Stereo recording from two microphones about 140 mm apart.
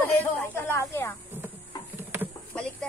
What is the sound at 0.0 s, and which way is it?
Snake, 15° left (ahead or behind).